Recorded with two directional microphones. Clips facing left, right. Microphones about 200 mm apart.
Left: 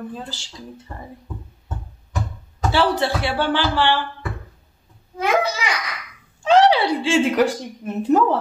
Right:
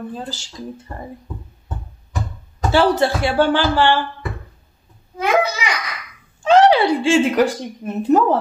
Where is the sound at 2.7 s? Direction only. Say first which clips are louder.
Right 4 dB; 45° right (ahead or behind).